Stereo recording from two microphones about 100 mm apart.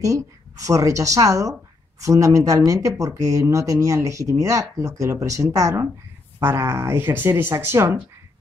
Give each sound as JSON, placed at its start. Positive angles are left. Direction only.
{"t": 0.0, "sound": "a woman's voice", "side_deg": -35}